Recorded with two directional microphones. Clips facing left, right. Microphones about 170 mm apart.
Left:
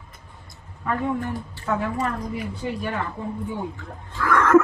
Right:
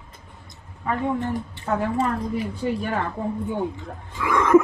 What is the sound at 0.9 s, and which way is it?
Speech, 20° right (ahead or behind).